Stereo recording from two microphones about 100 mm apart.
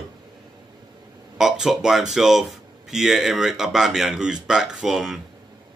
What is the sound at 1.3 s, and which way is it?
Speech, 5° right (ahead or behind).